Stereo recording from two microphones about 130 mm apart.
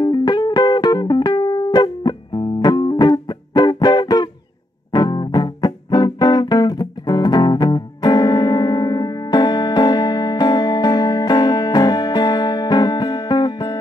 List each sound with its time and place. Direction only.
0.0 s music: 35° left (ahead or behind)